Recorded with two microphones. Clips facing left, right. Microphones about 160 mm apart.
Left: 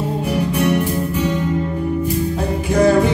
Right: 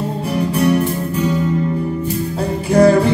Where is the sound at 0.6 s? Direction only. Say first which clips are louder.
Right 3 dB; 35° right (ahead or behind).